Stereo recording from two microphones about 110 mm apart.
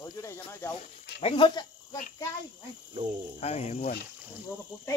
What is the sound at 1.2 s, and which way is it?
Speech, 45° left (ahead or behind).